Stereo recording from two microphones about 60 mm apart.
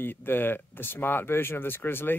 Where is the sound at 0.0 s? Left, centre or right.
Left.